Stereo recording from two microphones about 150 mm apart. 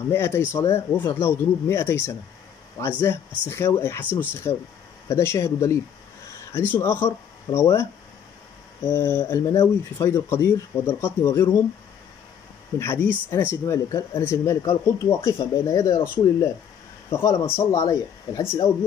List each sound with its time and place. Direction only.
0.1 s speech: 15° left (ahead or behind)
12.7 s speech: 15° left (ahead or behind)